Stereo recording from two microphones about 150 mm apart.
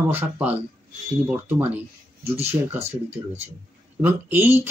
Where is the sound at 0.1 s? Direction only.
10° right (ahead or behind).